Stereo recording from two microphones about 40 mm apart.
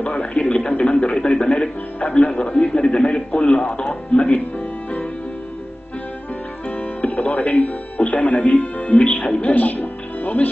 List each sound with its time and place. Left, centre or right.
0.0 s a sound: left
1.3 s music: left
6.7 s music: left
9.3 s speech: left